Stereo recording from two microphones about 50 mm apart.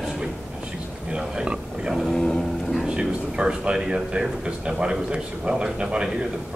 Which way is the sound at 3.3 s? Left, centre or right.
Centre.